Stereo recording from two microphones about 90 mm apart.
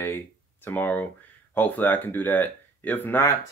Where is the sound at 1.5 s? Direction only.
20° left (ahead or behind).